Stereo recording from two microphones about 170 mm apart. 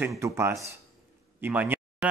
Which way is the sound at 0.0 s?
15° right (ahead or behind).